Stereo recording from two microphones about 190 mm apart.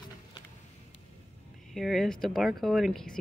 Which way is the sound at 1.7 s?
Centre (ahead or behind).